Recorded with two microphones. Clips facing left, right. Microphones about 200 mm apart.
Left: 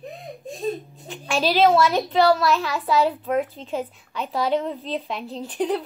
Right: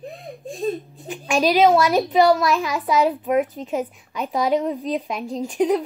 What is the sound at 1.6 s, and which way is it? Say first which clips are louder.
A child's voice: left 1 dB; 15° right (ahead or behind).